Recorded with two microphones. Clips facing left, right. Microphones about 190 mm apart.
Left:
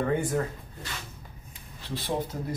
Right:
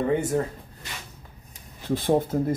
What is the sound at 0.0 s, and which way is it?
Speech, 20° right (ahead or behind).